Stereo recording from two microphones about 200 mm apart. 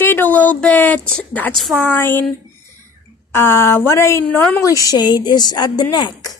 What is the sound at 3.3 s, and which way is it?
Speech, 10° left (ahead or behind).